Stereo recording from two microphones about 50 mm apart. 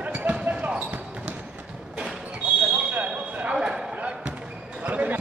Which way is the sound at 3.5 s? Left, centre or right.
Centre.